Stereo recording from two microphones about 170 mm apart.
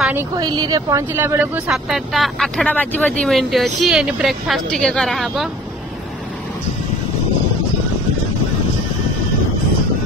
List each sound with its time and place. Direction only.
0.4 s speech: 20° right (ahead or behind)
1.7 s speech: centre (ahead or behind)